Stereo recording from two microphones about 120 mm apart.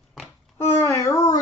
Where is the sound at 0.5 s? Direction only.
20° left (ahead or behind).